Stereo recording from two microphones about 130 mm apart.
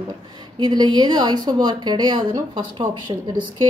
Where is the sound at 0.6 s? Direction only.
35° right (ahead or behind).